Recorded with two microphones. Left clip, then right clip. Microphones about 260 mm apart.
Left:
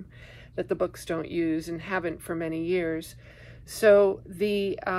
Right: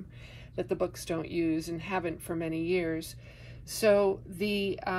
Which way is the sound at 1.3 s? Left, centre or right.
Left.